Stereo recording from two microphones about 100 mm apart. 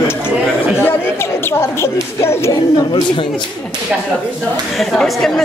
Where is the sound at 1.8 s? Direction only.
25° left (ahead or behind).